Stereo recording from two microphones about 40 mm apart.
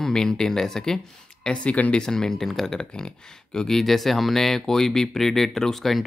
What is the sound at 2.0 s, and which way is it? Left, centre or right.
Speech, centre.